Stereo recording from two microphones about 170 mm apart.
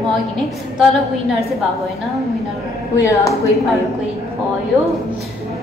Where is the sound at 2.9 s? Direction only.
20° left (ahead or behind).